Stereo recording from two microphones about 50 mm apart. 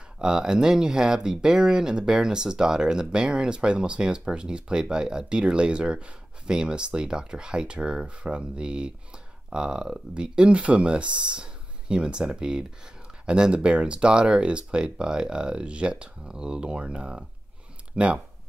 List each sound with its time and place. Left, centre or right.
0.2 s speech: centre